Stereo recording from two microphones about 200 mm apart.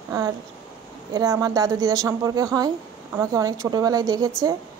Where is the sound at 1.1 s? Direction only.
15° right (ahead or behind).